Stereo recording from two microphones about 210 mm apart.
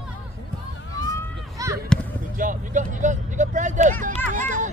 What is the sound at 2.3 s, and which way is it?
Speech, 40° right (ahead or behind).